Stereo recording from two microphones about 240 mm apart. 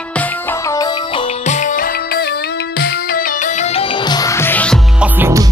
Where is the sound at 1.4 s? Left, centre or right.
Left; by 5.1 s centre.